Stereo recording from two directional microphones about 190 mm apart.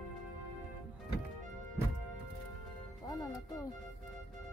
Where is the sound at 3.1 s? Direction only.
20° left (ahead or behind).